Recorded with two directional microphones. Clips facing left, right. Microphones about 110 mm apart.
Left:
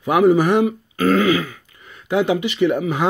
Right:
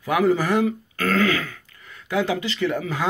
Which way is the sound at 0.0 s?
20° left (ahead or behind).